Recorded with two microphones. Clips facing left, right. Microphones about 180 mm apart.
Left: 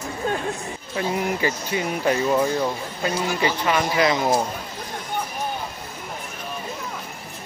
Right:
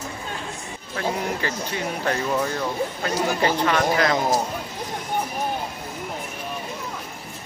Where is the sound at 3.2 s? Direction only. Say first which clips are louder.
Right 3 dB; 45° right (ahead or behind).